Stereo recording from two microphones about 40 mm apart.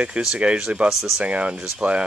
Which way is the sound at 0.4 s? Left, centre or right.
Right.